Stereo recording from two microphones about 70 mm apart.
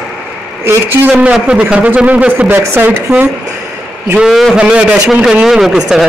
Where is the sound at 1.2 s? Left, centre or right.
Centre; by 3.1 s right.